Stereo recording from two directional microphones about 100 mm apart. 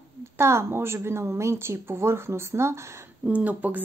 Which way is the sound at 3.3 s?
15° right (ahead or behind).